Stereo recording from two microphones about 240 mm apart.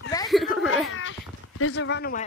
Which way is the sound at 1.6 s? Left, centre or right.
Left.